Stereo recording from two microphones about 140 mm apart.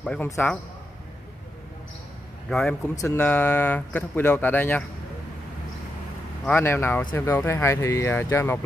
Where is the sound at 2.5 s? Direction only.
5° left (ahead or behind).